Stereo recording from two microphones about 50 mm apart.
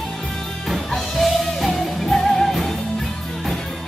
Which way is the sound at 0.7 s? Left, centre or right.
Centre.